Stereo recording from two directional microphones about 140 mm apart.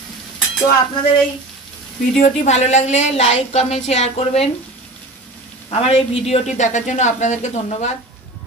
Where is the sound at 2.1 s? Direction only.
60° left (ahead or behind).